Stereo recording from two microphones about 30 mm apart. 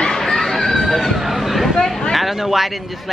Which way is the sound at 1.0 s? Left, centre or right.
Centre.